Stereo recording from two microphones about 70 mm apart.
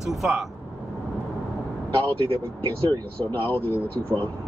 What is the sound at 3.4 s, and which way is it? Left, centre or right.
Speech, left.